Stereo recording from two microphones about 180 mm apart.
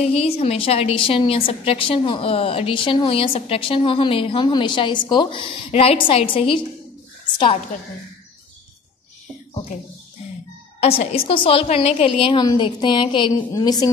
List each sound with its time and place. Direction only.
0.0 s a woman's voice: 35° left (ahead or behind)
10.8 s a woman's voice: 35° left (ahead or behind); by 13.8 s 20° left (ahead or behind)